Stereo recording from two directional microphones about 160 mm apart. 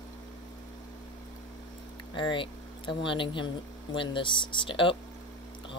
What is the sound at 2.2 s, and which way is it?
Speech, 30° left (ahead or behind).